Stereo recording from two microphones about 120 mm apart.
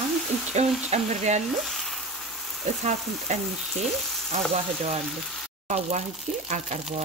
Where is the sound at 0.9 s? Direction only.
70° right (ahead or behind).